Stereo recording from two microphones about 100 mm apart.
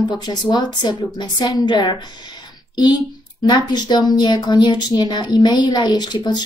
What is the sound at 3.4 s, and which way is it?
A woman's voice, 45° left (ahead or behind).